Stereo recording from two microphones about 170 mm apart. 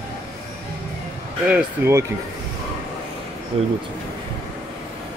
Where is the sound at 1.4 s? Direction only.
10° right (ahead or behind).